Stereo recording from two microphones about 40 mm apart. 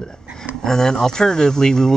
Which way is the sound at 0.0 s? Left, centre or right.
Centre.